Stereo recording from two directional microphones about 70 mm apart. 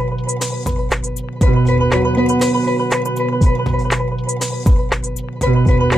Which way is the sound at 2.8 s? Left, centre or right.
Centre.